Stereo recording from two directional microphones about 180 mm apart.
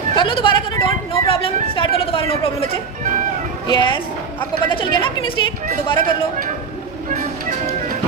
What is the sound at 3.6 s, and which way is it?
A woman's voice, 25° left (ahead or behind).